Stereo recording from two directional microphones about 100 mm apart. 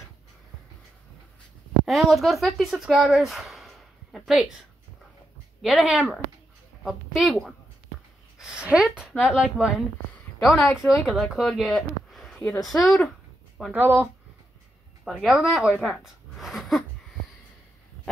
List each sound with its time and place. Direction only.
1.9 s speech: centre (ahead or behind)
5.6 s a woman's voice: centre (ahead or behind)
8.4 s a sound: 10° right (ahead or behind)
8.8 s a woman's voice: 5° right (ahead or behind)
10.4 s a woman's voice: centre (ahead or behind)
13.7 s speech: 20° right (ahead or behind)
15.2 s speech: 5° right (ahead or behind)